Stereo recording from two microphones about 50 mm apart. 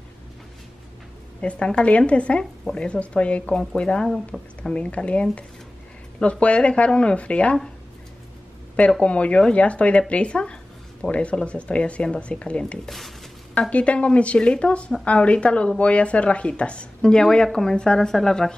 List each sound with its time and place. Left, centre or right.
1.4 s speech: left
4.3 s speech: centre
4.7 s speech: left
9.0 s speech: left
12.8 s speech: centre
13.6 s speech: left; by 18.5 s centre